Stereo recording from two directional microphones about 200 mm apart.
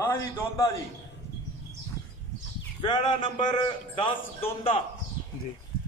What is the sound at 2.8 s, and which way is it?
A man's voice, 20° left (ahead or behind).